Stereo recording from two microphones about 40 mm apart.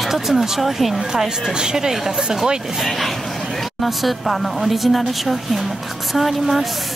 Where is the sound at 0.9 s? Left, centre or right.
Centre.